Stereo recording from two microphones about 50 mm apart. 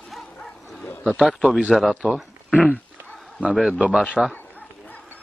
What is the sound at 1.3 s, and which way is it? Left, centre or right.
Speech, centre.